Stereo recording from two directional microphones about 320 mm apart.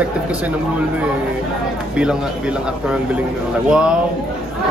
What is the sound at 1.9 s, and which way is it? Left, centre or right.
A man's voice, centre.